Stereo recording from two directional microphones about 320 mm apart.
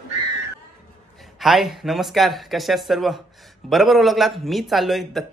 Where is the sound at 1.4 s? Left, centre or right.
Centre.